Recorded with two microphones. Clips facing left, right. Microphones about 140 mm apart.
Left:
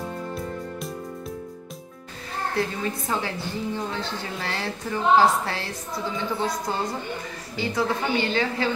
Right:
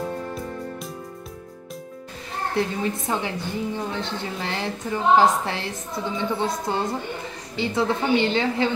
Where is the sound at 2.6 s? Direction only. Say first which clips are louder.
Right 3 dB; 20° right (ahead or behind).